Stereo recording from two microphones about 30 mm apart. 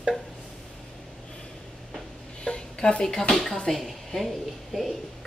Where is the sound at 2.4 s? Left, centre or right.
Left.